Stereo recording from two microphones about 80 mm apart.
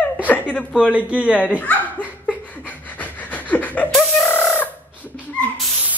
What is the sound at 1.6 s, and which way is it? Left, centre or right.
Speech, centre.